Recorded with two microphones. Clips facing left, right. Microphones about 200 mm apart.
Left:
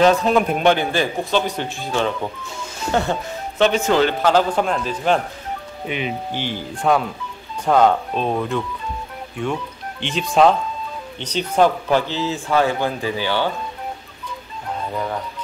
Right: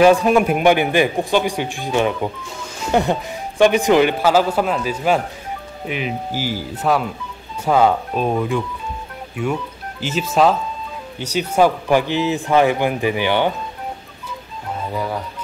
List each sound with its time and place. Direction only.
0.0 s speech: 10° right (ahead or behind)